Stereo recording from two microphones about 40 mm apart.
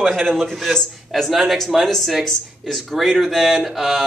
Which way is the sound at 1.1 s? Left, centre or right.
Centre.